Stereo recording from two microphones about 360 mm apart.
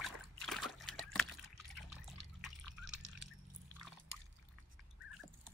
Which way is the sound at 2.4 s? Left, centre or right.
Centre.